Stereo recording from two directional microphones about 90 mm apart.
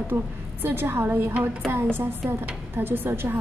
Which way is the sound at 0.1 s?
25° right (ahead or behind).